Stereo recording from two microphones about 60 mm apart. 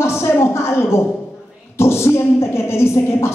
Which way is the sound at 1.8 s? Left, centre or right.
Left.